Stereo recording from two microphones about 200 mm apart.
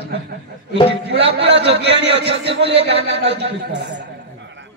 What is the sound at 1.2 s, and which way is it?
Speech, 30° right (ahead or behind).